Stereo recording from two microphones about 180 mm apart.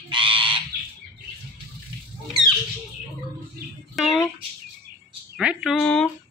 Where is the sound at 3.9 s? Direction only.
Centre (ahead or behind).